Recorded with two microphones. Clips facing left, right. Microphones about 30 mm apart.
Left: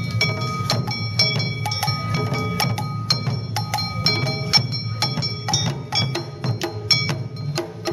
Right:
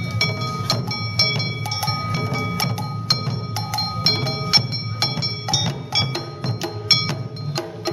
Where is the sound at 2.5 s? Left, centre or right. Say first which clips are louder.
Left 1 dB; left.